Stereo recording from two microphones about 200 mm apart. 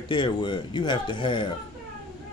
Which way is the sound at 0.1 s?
25° left (ahead or behind).